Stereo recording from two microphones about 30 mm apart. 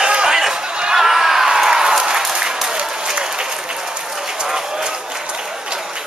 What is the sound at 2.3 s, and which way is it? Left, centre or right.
Applause, right.